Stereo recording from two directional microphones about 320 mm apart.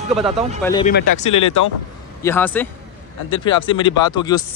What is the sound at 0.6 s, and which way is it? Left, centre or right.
Speech, centre.